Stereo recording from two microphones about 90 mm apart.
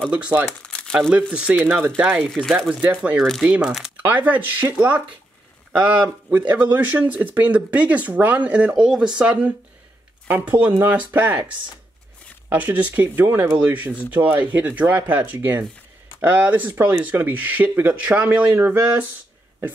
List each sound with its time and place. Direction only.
0.1 s speech: 15° right (ahead or behind)
0.5 s crumpling: 10° left (ahead or behind)
1.1 s speech: 10° right (ahead or behind)
2.2 s speech: 5° left (ahead or behind)
2.7 s speech: 15° right (ahead or behind)